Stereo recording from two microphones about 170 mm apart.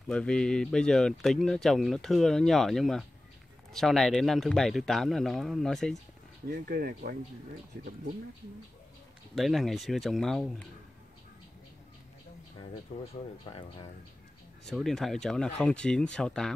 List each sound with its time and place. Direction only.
0.1 s speech: 5° left (ahead or behind)
6.5 s speech: 65° right (ahead or behind)
9.3 s speech: centre (ahead or behind)
12.9 s speech: 40° left (ahead or behind)
13.5 s speech: 30° left (ahead or behind)
14.6 s speech: centre (ahead or behind)